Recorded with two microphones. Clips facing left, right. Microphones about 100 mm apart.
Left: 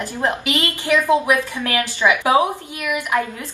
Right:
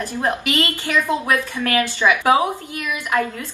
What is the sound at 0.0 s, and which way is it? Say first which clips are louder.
A woman's voice: even; 20° left (ahead or behind).